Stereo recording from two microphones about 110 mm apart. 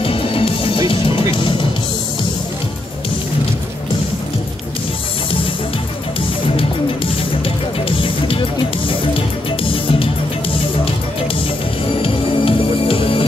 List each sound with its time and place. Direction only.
0.0 s music: 55° left (ahead or behind)
8.0 s music: 55° left (ahead or behind)
12.0 s music: 55° left (ahead or behind)